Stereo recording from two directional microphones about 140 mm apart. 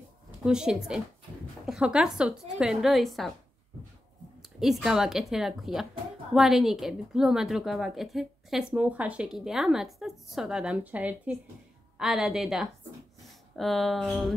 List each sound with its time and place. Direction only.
0.5 s a woman's voice: 5° right (ahead or behind)
4.4 s a woman's voice: 5° right (ahead or behind)